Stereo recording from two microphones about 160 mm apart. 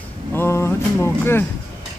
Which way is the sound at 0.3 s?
15° left (ahead or behind).